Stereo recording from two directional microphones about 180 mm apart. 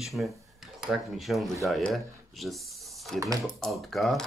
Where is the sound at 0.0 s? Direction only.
Centre (ahead or behind).